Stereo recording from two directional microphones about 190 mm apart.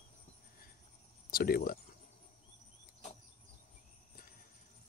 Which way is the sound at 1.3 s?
50° left (ahead or behind).